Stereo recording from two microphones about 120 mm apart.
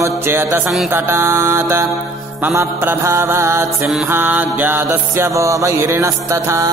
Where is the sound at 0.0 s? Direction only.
20° right (ahead or behind).